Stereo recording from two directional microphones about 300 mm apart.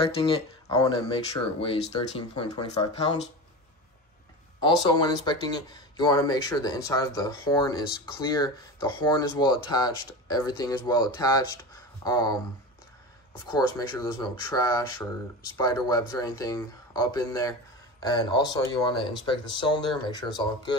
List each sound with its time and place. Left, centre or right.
0.3 s speech: centre
4.8 s speech: centre